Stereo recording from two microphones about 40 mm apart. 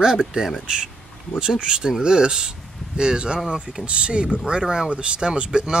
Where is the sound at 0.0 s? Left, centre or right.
Centre.